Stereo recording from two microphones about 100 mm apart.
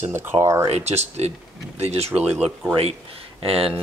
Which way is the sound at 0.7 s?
90° right.